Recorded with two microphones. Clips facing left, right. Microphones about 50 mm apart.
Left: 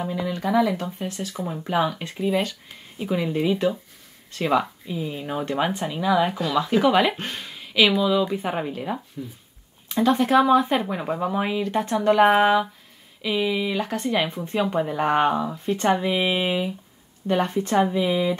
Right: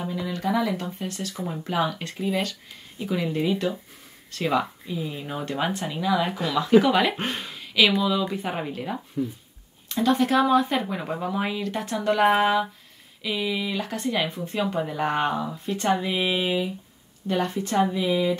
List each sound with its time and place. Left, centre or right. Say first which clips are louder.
0.0 s speech: left 2 dB; centre
7.2 s speech: right 3 dB; right
7.4 s speech: left 2 dB; centre
11.9 s speech: left 4 dB; centre
12.3 s speech: left 3 dB; centre
13.7 s speech: left 3 dB; left
16.0 s speech: left 2 dB; centre
17.3 s speech: left 3 dB; left
17.7 s speech: left 2 dB; centre